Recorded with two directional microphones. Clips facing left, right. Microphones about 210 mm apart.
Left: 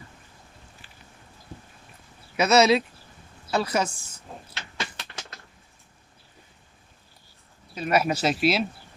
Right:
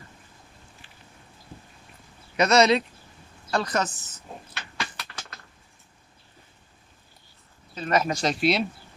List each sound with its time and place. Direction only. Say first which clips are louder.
2.3 s speech: even; 5° left (ahead or behind)
4.6 s a sound: even; 25° left (ahead or behind)
7.7 s speech: left 1 dB; 10° left (ahead or behind)